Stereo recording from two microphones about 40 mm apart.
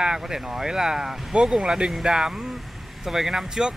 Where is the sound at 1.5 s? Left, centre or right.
Centre.